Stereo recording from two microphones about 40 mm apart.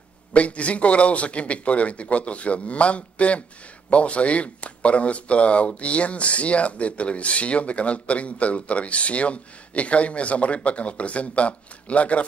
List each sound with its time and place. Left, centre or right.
0.3 s speech: left